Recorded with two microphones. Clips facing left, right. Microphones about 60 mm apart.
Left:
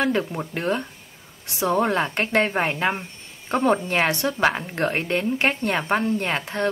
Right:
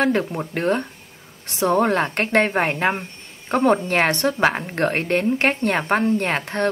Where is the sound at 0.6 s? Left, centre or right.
Right.